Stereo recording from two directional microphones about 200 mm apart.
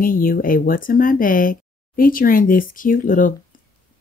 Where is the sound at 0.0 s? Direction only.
45° left (ahead or behind).